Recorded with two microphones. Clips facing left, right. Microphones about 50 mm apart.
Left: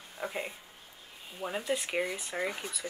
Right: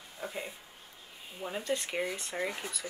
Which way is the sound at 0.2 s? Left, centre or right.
Left.